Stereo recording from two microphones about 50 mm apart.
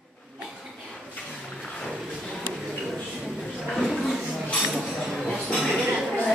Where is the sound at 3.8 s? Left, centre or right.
Centre.